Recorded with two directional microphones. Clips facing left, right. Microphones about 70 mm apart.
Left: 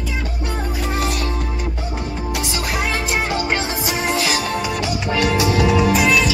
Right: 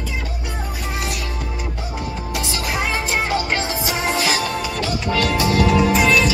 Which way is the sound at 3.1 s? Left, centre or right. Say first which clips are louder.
Even; left.